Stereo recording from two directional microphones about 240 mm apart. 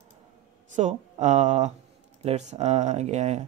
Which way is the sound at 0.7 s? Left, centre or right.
Right.